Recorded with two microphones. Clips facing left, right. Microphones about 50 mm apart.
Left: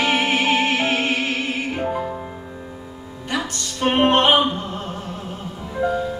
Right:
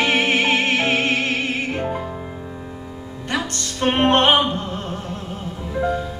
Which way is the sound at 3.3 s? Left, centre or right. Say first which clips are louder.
Right 1 dB; centre.